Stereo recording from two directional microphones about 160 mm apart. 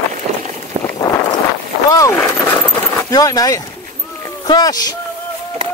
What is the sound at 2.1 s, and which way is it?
Speech, 15° left (ahead or behind).